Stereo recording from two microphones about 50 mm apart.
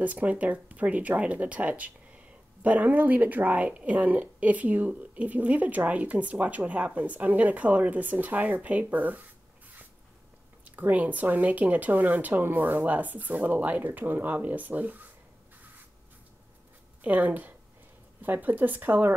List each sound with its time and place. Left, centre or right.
0.0 s speech: right
17.0 s speech: right